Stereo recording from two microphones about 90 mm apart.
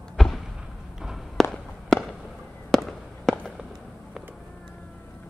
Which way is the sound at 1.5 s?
5° left (ahead or behind).